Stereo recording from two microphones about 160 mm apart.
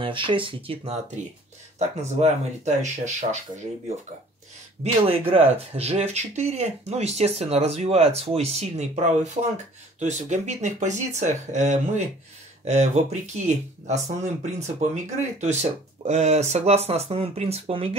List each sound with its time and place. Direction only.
0.0 s speech: 30° right (ahead or behind)
2.1 s speech: 45° right (ahead or behind)
5.0 s speech: 35° right (ahead or behind)